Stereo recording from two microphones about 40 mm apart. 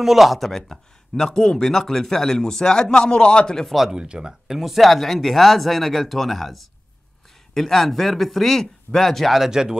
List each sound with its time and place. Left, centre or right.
0.0 s speech: centre
3.6 s speech: centre
3.9 s speech: right
4.3 s speech: centre
9.4 s speech: centre